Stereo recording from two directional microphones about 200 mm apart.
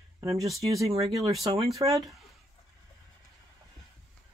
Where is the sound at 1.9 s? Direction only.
Centre (ahead or behind).